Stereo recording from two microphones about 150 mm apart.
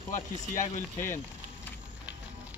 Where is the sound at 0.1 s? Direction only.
55° left (ahead or behind).